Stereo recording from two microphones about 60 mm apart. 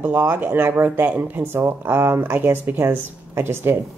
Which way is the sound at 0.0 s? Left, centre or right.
Right.